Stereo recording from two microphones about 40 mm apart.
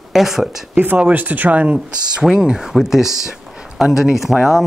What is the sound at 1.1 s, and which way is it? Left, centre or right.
Speech, right.